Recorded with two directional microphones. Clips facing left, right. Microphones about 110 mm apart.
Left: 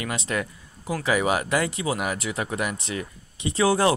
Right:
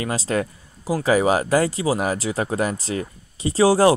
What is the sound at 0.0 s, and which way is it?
Speech, 35° right (ahead or behind).